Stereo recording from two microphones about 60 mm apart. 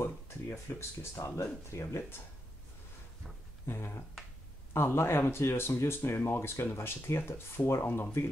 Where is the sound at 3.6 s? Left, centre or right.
Left.